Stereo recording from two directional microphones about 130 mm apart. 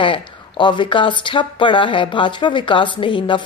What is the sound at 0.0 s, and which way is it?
Speech, 40° left (ahead or behind).